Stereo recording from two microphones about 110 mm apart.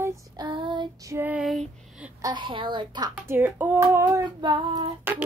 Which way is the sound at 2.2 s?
40° right (ahead or behind).